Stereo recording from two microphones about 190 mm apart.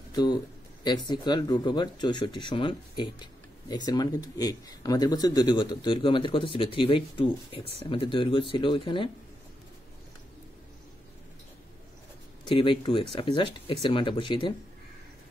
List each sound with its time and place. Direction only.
0.1 s speech: 20° left (ahead or behind)
12.4 s speech: 25° left (ahead or behind)